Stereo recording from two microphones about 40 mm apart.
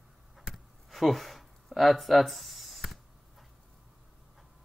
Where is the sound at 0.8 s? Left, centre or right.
Centre.